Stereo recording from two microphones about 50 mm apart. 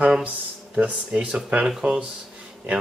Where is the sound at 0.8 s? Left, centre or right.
Right.